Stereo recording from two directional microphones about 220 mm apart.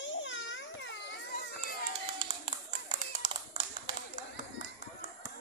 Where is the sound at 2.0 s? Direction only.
20° right (ahead or behind).